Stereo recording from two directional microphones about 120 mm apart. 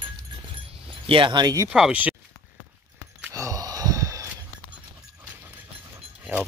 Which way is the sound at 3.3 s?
25° right (ahead or behind).